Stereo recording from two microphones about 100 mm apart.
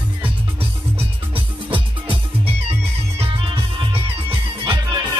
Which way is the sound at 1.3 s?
60° right (ahead or behind).